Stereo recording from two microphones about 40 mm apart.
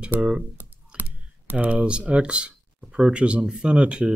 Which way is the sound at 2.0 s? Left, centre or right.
Right.